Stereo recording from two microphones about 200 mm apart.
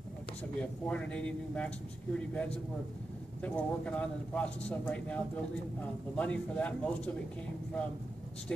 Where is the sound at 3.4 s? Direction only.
5° left (ahead or behind).